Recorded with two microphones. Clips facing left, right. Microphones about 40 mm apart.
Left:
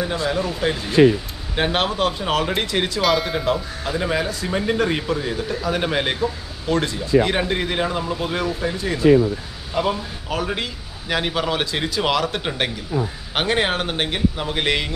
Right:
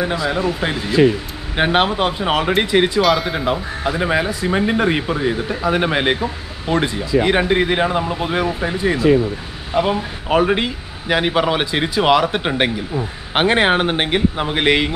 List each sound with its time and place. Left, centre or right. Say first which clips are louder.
0.3 s speech: right 2 dB; right
3.0 s speech: right 4 dB; centre
3.3 s speech: right 2 dB; centre